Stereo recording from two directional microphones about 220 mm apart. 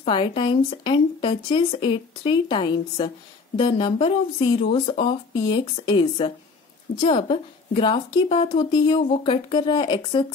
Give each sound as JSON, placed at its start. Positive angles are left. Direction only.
{"t": 0.0, "sound": "speech", "side_deg": 25}